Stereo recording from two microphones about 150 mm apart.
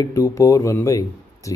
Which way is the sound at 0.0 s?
20° left (ahead or behind).